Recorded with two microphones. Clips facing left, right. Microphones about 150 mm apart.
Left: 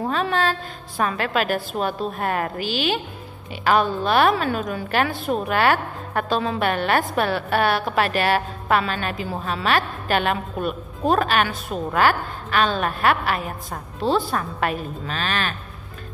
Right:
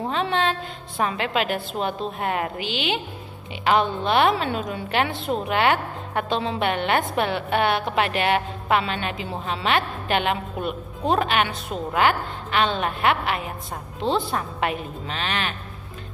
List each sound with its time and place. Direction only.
0.1 s a woman's voice: 20° right (ahead or behind)